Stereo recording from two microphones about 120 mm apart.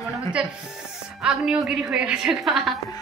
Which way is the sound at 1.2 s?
5° right (ahead or behind).